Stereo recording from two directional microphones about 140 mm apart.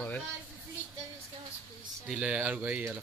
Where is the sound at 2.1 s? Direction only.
5° right (ahead or behind).